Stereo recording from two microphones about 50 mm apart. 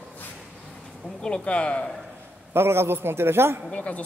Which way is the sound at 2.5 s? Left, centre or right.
Right.